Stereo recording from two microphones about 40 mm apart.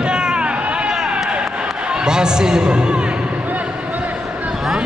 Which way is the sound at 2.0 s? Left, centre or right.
Centre.